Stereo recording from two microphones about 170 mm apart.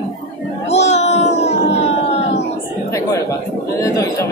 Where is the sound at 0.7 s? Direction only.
40° left (ahead or behind).